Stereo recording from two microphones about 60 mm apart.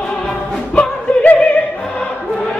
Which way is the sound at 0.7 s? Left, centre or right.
Centre.